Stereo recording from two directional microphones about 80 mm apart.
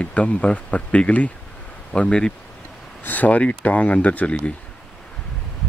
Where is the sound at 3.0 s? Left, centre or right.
Left.